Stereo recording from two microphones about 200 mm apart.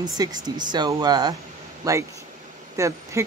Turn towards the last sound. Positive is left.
turn(degrees=-15)  # may be behind; listen again after turning